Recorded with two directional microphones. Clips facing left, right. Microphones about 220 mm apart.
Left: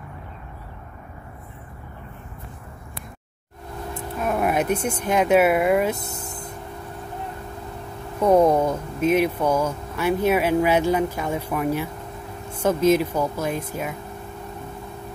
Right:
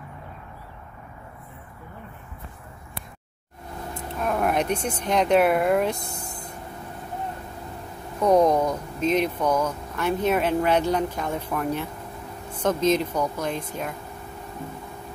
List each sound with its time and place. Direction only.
4.2 s speech: 5° left (ahead or behind)
6.1 s vehicle: 20° left (ahead or behind)
8.2 s speech: 5° left (ahead or behind)